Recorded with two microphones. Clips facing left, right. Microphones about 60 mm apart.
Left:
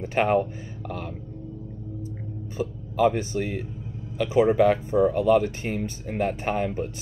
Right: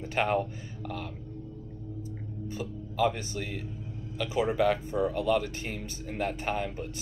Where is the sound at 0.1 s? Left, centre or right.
Left.